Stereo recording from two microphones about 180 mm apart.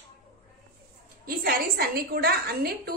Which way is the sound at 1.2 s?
55° right (ahead or behind).